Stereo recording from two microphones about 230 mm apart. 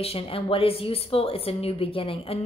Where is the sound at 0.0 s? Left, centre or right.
Left.